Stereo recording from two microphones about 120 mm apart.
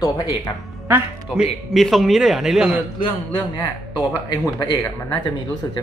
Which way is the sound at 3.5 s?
35° left (ahead or behind).